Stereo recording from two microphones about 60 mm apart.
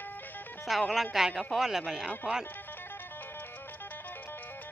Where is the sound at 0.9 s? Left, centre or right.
Centre.